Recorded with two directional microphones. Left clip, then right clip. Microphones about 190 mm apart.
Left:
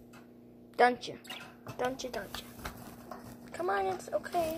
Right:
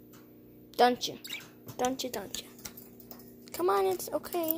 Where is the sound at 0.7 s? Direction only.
10° right (ahead or behind); by 2.5 s 30° right (ahead or behind).